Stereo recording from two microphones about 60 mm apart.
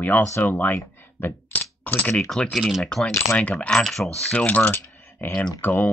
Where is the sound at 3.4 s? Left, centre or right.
Left.